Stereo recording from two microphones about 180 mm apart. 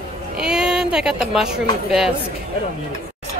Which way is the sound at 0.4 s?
5° right (ahead or behind).